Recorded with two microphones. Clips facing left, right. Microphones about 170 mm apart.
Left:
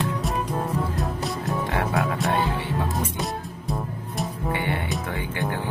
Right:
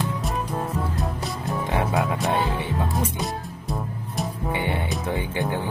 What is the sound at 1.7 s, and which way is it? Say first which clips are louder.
Speech: right 3 dB; 20° right (ahead or behind).